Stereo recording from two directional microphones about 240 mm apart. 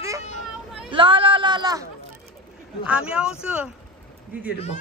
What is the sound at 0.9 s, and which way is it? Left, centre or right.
Speech, right.